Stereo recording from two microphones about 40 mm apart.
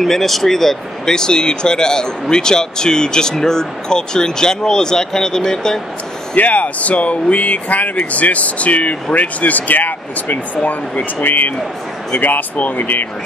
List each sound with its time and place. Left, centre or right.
0.0 s speech: centre
6.3 s speech: left